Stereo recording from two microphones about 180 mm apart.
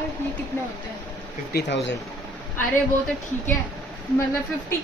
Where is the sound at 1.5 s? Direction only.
85° left.